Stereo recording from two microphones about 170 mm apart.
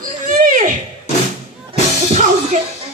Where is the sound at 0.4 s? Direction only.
50° right (ahead or behind).